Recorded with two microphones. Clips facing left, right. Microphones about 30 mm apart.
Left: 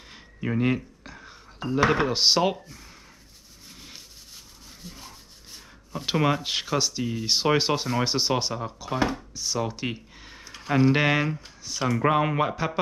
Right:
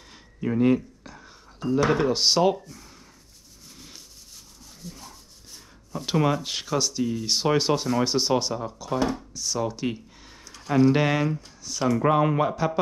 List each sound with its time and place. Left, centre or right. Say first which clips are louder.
0.1 s speech: right 1 dB; centre
3.7 s rub: left 1 dB; centre
4.8 s speech: right 2 dB; left